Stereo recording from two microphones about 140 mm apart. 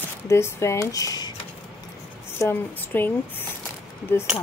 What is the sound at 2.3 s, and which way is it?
Speech, 15° left (ahead or behind).